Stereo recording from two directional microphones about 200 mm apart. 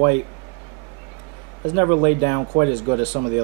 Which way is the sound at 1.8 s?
25° right (ahead or behind).